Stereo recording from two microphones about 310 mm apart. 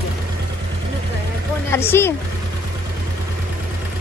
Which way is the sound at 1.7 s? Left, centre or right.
Centre.